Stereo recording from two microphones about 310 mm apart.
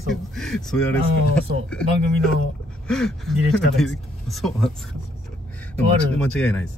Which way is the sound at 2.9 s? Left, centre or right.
Centre.